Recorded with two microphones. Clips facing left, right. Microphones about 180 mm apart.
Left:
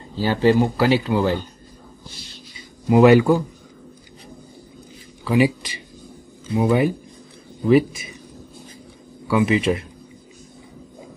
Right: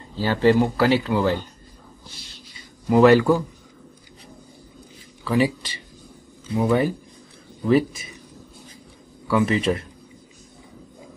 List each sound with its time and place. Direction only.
0.2 s speech: 15° left (ahead or behind)
2.9 s speech: 15° left (ahead or behind)
5.2 s speech: 15° left (ahead or behind)
6.5 s speech: 10° left (ahead or behind)
9.3 s speech: 5° left (ahead or behind)